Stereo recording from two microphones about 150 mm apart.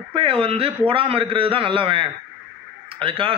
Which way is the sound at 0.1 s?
40° right (ahead or behind).